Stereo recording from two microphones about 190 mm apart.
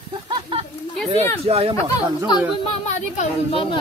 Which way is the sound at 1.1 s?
30° right (ahead or behind).